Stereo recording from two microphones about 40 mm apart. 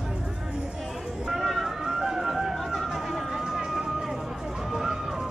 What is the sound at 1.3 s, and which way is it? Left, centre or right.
Vehicle, centre.